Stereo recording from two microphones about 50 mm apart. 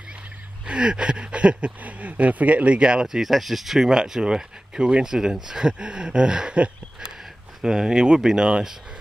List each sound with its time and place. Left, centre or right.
0.7 s speech: centre